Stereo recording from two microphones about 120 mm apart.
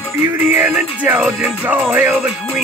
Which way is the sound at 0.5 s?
15° right (ahead or behind).